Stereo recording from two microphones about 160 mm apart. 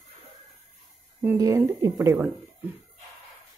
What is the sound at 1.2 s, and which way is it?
Speech, 20° right (ahead or behind).